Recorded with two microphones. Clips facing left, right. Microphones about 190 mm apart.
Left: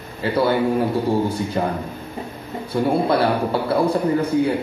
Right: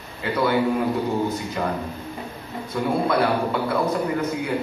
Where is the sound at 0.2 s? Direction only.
30° left (ahead or behind).